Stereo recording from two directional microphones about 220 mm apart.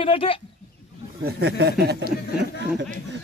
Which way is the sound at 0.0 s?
25° left (ahead or behind).